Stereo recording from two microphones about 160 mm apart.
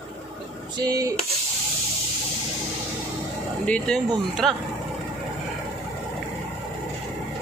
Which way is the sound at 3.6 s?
5° left (ahead or behind).